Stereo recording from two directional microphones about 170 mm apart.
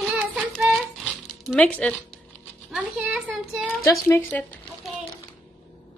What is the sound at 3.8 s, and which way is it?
Speech, 15° left (ahead or behind).